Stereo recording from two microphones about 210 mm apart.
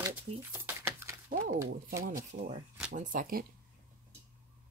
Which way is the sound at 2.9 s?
40° right (ahead or behind).